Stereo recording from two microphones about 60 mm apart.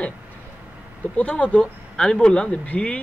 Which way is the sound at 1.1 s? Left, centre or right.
Left.